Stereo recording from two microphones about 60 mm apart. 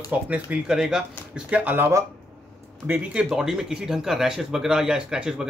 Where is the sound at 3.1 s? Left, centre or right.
Centre.